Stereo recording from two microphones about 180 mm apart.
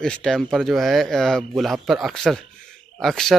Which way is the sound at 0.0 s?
5° left (ahead or behind).